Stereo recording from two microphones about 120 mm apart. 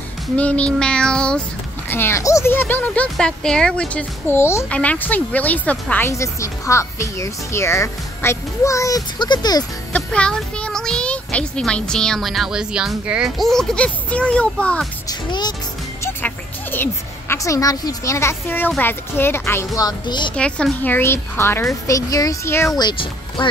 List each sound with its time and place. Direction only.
0.4 s speech: 10° left (ahead or behind)
1.9 s speech: 20° left (ahead or behind)
4.6 s speech: 10° left (ahead or behind)
6.0 s speech: 25° left (ahead or behind)
9.9 s a child's voice: 10° left (ahead or behind)
15.0 s speech: 35° left (ahead or behind)
16.0 s a sound: 15° left (ahead or behind)
18.8 s speech: 15° left (ahead or behind); by 20.3 s 40° left (ahead or behind)
20.3 s speech: 10° left (ahead or behind)
22.8 s speech: 40° left (ahead or behind)